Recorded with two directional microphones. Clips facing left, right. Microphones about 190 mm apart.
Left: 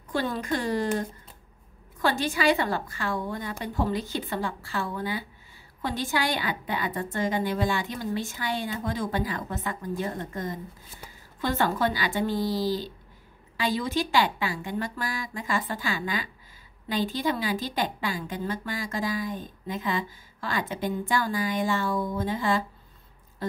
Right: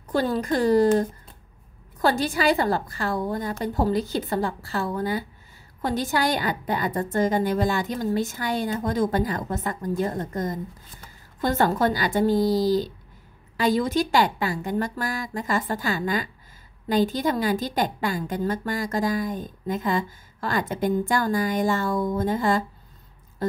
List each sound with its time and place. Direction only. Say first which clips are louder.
0.1 s a woman's voice: right 5 dB; 40° right (ahead or behind)